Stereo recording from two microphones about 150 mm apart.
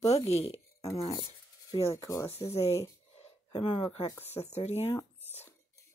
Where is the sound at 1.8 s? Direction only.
20° left (ahead or behind).